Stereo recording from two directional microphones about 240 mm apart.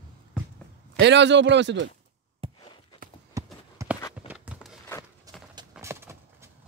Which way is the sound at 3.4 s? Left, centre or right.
Centre.